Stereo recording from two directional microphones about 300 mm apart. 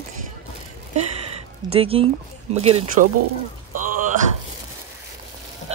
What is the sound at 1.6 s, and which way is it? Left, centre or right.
Speech, centre.